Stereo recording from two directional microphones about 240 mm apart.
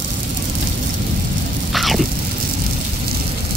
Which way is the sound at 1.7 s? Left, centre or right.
Centre.